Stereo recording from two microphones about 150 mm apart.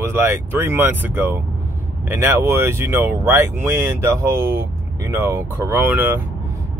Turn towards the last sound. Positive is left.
turn(degrees=-15)  # may be behind; listen again after turning